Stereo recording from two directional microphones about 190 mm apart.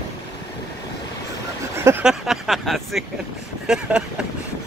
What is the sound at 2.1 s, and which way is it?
Speech, centre (ahead or behind).